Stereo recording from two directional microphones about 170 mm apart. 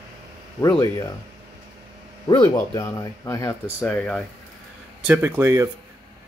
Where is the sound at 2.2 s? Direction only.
25° left (ahead or behind).